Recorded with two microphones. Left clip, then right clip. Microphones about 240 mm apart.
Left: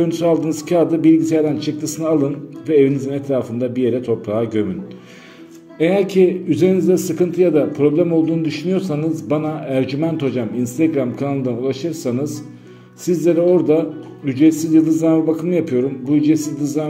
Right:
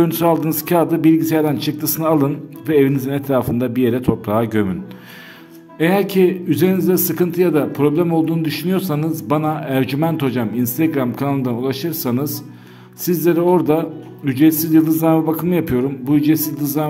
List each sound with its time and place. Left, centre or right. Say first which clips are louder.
0.1 s a man's voice: even; right
5.8 s a man's voice: left 1 dB; right